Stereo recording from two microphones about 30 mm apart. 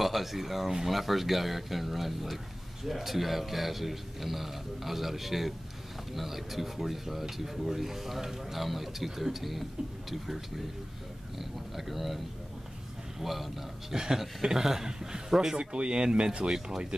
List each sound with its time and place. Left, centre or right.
0.0 s a man's voice: centre
13.2 s a man's voice: centre
13.9 s a man's voice: right
15.5 s speech: right